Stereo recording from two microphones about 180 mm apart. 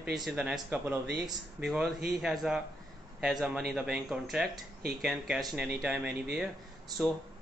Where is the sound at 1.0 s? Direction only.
65° right (ahead or behind).